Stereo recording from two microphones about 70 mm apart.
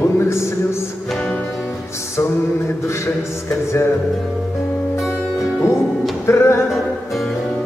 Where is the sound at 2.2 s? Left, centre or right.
Left.